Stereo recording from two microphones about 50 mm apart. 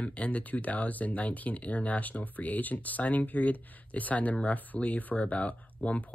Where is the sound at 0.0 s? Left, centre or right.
Left.